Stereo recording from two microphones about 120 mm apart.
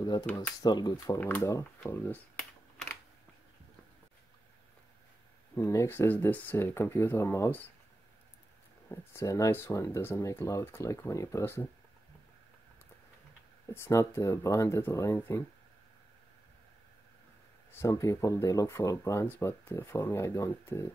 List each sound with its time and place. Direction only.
0.0 s speech: 35° left (ahead or behind)
0.9 s speech: 20° left (ahead or behind)
5.7 s speech: 20° left (ahead or behind)
8.8 s speech: 20° left (ahead or behind)
13.8 s speech: 25° left (ahead or behind)
17.6 s speech: 25° left (ahead or behind)